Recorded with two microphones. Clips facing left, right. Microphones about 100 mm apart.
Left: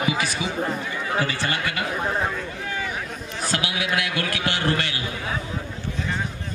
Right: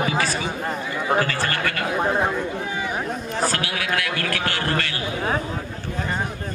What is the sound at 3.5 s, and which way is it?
A man's voice, 15° left (ahead or behind).